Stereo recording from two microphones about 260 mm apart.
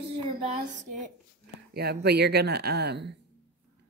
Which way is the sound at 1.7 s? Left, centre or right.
Right.